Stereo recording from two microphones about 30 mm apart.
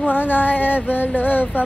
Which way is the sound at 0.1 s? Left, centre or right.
Left.